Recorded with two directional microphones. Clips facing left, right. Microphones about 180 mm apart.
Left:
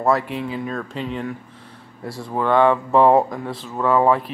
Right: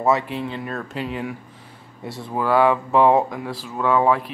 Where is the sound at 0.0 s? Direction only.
Centre (ahead or behind).